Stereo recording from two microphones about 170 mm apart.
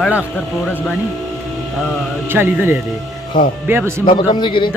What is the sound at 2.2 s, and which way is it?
Speech, 10° right (ahead or behind).